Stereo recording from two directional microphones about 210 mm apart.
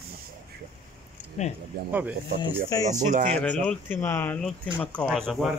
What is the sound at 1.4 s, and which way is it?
Speech, 35° left (ahead or behind).